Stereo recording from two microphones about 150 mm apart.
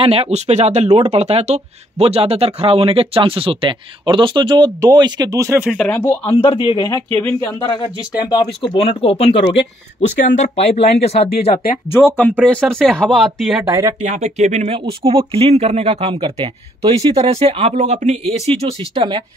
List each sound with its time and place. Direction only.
0.0 s speech: 40° right (ahead or behind); by 5.8 s 15° right (ahead or behind)
6.2 s speech: 35° left (ahead or behind)
7.2 s speech: 10° left (ahead or behind)
7.6 s speech: 30° left (ahead or behind)
10.0 s speech: 50° left (ahead or behind)
12.4 s speech: 5° left (ahead or behind)
13.7 s speech: 20° right (ahead or behind)
14.0 s speech: 50° right (ahead or behind); by 19.2 s 35° right (ahead or behind)